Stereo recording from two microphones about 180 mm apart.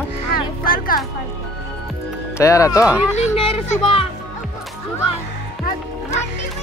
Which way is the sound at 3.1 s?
30° left (ahead or behind).